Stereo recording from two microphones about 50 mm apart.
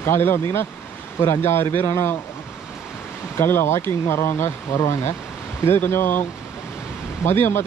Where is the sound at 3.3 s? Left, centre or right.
Left.